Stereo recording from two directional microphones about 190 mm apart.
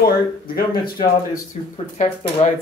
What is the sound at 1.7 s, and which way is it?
Speech, 35° left (ahead or behind).